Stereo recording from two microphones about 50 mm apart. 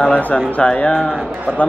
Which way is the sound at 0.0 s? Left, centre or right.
Left.